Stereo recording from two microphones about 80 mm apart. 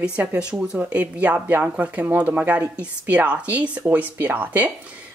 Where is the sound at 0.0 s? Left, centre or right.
Centre.